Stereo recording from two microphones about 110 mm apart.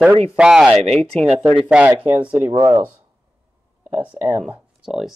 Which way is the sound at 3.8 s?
15° right (ahead or behind).